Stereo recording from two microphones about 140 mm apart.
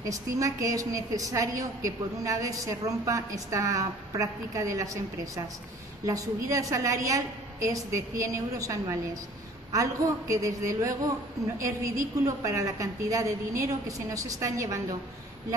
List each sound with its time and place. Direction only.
0.0 s a woman's voice: 25° right (ahead or behind)